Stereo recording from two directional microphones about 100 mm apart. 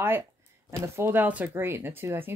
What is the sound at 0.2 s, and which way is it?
Speech, 25° right (ahead or behind).